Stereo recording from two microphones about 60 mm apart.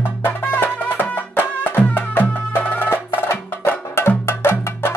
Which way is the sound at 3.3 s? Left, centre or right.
Left.